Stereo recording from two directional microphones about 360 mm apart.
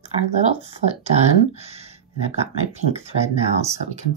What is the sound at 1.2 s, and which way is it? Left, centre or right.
Speech, centre.